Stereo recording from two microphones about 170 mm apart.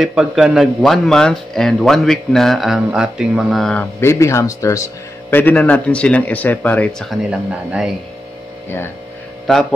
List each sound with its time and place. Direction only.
0.0 s speech: 5° right (ahead or behind)
4.0 s a man's voice: 15° left (ahead or behind); by 7.9 s 5° right (ahead or behind)
9.5 s speech: centre (ahead or behind)